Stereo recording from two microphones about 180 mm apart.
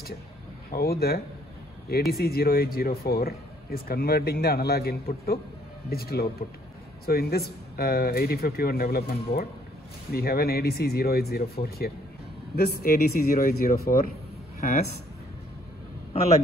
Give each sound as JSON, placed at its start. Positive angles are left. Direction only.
{"t": 0.7, "sound": "a man's voice", "side_deg": 60}
{"t": 16.1, "sound": "a man's voice", "side_deg": 35}